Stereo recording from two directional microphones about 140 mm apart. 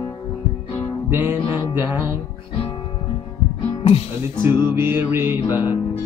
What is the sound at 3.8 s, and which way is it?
Speech, 40° left (ahead or behind).